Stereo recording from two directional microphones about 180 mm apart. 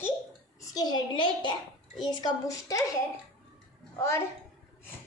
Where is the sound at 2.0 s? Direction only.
20° left (ahead or behind).